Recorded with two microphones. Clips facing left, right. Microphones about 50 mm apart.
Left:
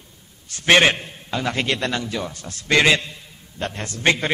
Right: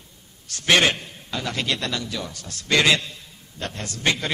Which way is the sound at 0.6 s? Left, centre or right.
Left.